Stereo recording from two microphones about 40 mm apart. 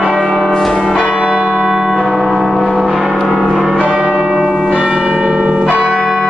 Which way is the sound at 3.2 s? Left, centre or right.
Centre.